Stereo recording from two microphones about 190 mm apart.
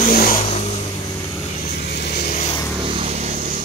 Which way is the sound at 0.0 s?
50° left (ahead or behind).